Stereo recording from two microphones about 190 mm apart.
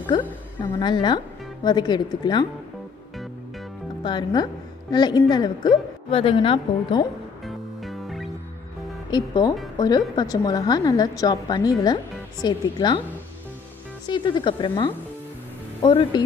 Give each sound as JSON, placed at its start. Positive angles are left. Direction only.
{"t": 0.1, "sound": "a woman's voice", "side_deg": 20}
{"t": 4.0, "sound": "a woman's voice", "side_deg": 25}
{"t": 7.4, "sound": "music", "side_deg": 0}
{"t": 9.1, "sound": "a woman's voice", "side_deg": 20}
{"t": 14.0, "sound": "a woman's voice", "side_deg": 25}